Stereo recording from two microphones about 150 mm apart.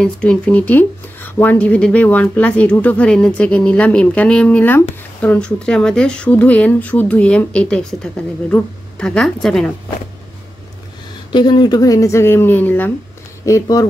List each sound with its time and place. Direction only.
0.0 s speech: 5° left (ahead or behind)
11.3 s speech: 30° left (ahead or behind)